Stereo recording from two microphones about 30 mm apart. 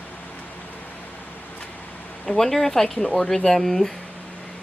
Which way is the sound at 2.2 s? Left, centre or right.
Centre.